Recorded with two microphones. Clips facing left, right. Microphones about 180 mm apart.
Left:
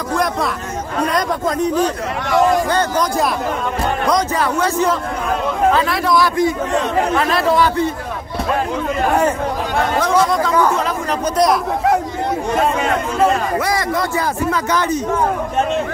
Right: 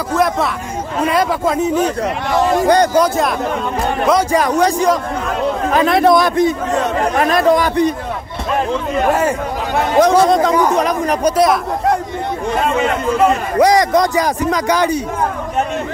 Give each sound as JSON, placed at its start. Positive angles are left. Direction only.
{"t": 0.1, "sound": "a man's voice", "side_deg": 0}
{"t": 2.7, "sound": "speech", "side_deg": -15}
{"t": 4.1, "sound": "a man's voice", "side_deg": -15}
{"t": 7.2, "sound": "a man's voice", "side_deg": -45}
{"t": 7.5, "sound": "speech", "side_deg": -15}
{"t": 10.0, "sound": "speech", "side_deg": -20}
{"t": 13.6, "sound": "speech", "side_deg": -15}